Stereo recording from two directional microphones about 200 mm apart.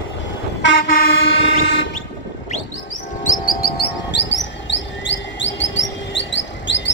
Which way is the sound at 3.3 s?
45° left (ahead or behind).